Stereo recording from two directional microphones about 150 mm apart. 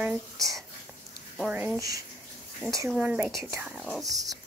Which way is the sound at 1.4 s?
5° right (ahead or behind).